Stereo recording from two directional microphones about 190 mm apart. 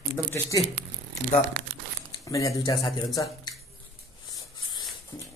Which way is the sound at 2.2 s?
15° left (ahead or behind).